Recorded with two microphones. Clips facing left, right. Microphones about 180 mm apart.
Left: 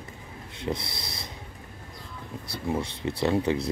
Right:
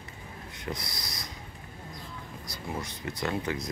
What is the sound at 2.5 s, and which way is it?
Speech, 30° left (ahead or behind).